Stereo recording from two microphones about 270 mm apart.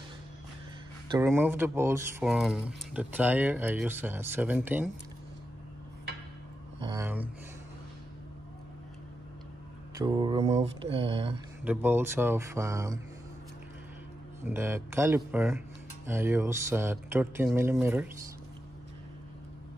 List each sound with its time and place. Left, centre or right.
1.1 s speech: centre
6.8 s speech: centre
9.9 s speech: centre
11.6 s speech: centre
14.4 s speech: centre